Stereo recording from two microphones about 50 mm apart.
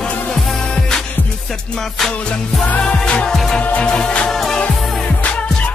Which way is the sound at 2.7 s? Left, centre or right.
Left.